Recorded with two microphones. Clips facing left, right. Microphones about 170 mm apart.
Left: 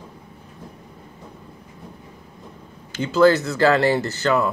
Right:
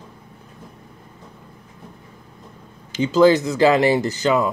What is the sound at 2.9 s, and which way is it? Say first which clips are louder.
Speech: right 2 dB; 15° right (ahead or behind).